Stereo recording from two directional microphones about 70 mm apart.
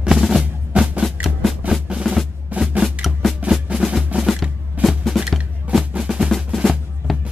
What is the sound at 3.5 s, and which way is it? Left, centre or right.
Music, centre.